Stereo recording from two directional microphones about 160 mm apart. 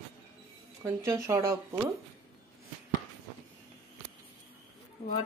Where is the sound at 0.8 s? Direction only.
20° right (ahead or behind).